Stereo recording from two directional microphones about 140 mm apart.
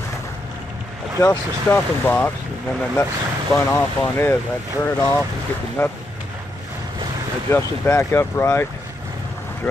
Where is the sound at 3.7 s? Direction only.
15° left (ahead or behind).